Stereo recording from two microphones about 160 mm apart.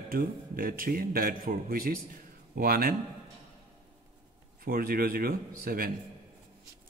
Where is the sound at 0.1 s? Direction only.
65° right (ahead or behind).